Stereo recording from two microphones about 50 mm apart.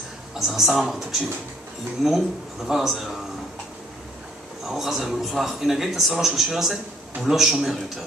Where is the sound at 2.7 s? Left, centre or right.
Centre.